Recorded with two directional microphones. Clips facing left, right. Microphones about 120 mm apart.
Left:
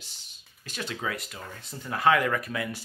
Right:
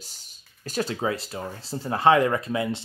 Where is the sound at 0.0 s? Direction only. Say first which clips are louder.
Right 4 dB; 40° right (ahead or behind).